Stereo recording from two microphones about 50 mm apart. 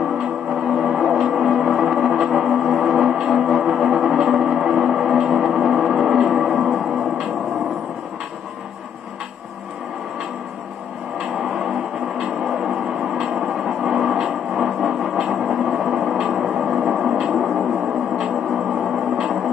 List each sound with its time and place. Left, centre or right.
0.5 s gong: centre
11.1 s music: centre
13.6 s train: centre
14.1 s music: centre
17.2 s a sound: centre
18.2 s music: centre